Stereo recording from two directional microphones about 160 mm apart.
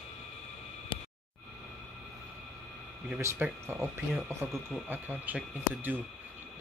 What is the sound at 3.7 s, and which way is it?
Speech, centre (ahead or behind).